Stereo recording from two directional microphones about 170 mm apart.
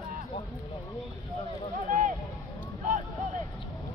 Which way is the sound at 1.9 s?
50° right (ahead or behind).